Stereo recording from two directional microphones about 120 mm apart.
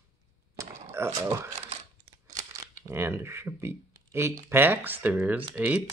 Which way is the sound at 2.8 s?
20° right (ahead or behind).